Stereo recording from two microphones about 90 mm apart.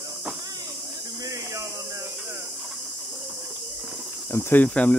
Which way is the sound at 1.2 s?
35° right (ahead or behind).